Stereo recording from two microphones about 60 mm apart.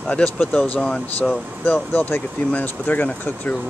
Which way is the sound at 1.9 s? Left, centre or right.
Left.